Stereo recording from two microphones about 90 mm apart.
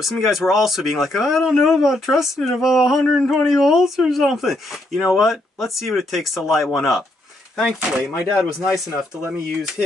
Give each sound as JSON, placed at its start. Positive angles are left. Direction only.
{"t": 0.0, "sound": "speech", "side_deg": 0}